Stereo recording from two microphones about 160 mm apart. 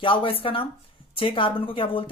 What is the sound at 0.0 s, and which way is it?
Speech, 35° left (ahead or behind).